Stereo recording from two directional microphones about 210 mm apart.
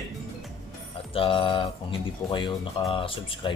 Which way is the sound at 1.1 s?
25° left (ahead or behind).